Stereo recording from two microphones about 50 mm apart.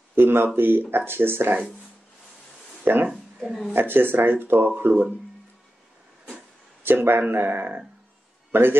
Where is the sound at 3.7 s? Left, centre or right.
Right.